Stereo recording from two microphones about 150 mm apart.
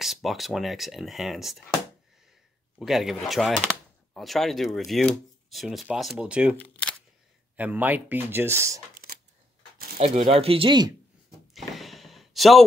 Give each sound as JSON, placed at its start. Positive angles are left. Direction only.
{"t": 0.0, "sound": "speech", "side_deg": 0}
{"t": 2.8, "sound": "speech", "side_deg": 0}
{"t": 6.5, "sound": "speech", "side_deg": 10}
{"t": 7.5, "sound": "speech", "side_deg": -10}
{"t": 8.9, "sound": "a sound", "side_deg": -85}
{"t": 9.9, "sound": "speech", "side_deg": -45}
{"t": 11.5, "sound": "a sound", "side_deg": 0}